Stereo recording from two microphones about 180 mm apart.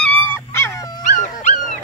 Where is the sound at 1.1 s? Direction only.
45° left (ahead or behind).